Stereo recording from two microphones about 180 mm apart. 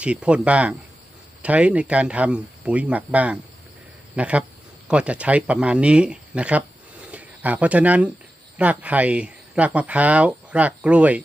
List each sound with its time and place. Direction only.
0.0 s a man's voice: 5° right (ahead or behind)